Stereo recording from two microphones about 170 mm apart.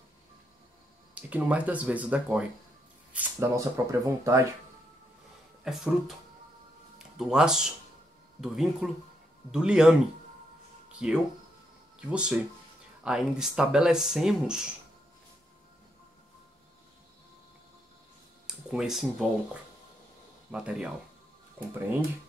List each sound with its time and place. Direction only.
1.1 s speech: 10° right (ahead or behind)
5.6 s speech: centre (ahead or behind)
11.0 s speech: 5° right (ahead or behind)
18.7 s speech: centre (ahead or behind)
20.5 s speech: 5° right (ahead or behind)